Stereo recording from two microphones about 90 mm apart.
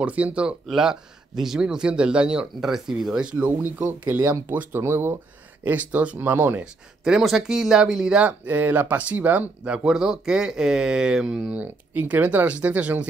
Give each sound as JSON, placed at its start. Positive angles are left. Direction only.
{"t": 0.0, "sound": "speech", "side_deg": -15}
{"t": 6.6, "sound": "speech", "side_deg": -5}
{"t": 9.8, "sound": "speech", "side_deg": -5}